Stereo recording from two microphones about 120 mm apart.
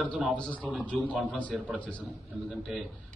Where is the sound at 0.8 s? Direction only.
10° left (ahead or behind).